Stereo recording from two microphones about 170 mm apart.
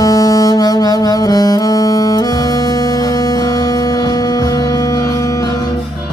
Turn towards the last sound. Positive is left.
turn(degrees=20)  # may be behind; listen again after turning